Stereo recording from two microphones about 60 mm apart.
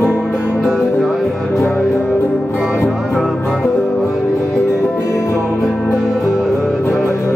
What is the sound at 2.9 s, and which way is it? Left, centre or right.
Music, centre.